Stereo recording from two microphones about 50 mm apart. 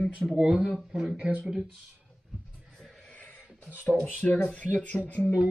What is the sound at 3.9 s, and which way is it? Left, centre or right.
Speech, left.